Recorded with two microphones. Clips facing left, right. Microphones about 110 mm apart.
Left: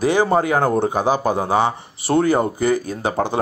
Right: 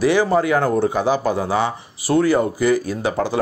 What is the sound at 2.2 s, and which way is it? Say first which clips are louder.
Speech: right 1 dB; 45° left (ahead or behind).